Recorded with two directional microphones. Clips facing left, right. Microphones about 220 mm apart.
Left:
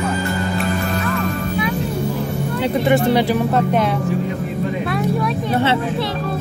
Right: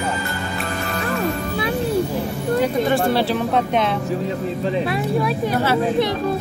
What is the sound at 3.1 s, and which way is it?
Speech, 15° left (ahead or behind).